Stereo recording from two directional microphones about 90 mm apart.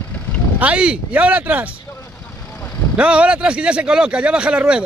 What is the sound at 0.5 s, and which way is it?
Speech, 15° right (ahead or behind).